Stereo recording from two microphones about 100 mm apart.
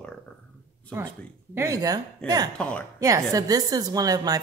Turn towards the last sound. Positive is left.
turn(degrees=-40)  # may be behind; listen again after turning